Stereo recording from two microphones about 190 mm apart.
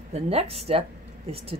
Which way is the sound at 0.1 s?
35° right (ahead or behind).